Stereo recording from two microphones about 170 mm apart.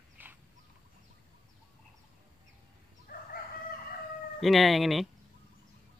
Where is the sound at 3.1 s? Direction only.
55° left (ahead or behind).